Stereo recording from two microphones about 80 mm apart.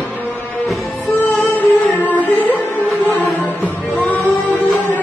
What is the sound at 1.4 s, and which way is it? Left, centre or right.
Music, left.